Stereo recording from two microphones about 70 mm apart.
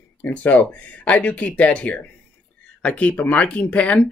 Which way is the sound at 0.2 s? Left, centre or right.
Centre.